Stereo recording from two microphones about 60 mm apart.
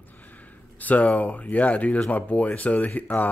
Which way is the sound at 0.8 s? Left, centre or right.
Left.